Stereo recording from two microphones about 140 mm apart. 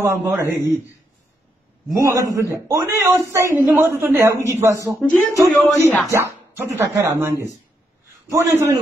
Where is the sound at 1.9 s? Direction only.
25° right (ahead or behind).